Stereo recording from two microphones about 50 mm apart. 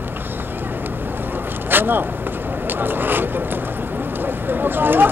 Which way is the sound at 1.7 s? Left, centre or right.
Right.